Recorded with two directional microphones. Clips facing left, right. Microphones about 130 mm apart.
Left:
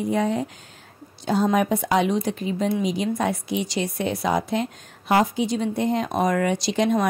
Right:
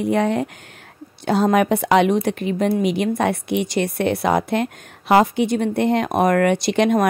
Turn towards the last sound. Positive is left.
turn(degrees=-65)  # may be behind; listen again after turning